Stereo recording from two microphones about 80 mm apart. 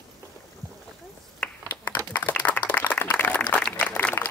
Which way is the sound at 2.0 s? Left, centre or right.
Left.